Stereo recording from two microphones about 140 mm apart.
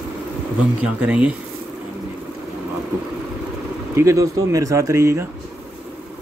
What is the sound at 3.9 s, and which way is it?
Speech, 20° right (ahead or behind).